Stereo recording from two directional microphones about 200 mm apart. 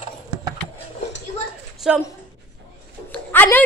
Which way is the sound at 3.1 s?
10° left (ahead or behind).